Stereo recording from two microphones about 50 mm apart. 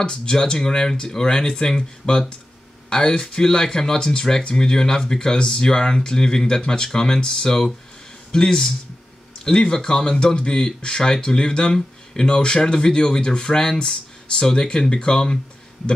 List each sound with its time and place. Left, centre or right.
0.0 s speech: centre